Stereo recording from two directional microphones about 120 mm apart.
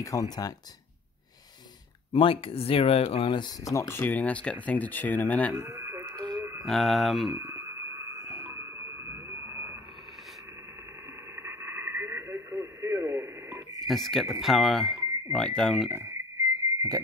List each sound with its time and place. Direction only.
0.0 s speech: 30° left (ahead or behind)
2.1 s speech: 50° left (ahead or behind)
3.7 s speech: 25° left (ahead or behind)
5.7 s radio: 25° right (ahead or behind)
5.9 s radio: 35° right (ahead or behind)
6.6 s speech: centre (ahead or behind)
8.5 s a sound: 25° right (ahead or behind)
11.3 s radio: 20° right (ahead or behind)
13.8 s speech: centre (ahead or behind)
15.9 s speech: 25° right (ahead or behind)
16.6 s whistle: 30° right (ahead or behind)